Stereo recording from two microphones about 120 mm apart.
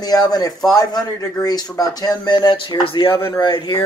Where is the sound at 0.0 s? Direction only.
30° left (ahead or behind).